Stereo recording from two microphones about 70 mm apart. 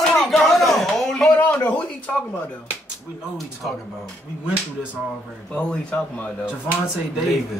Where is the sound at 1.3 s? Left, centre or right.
Left.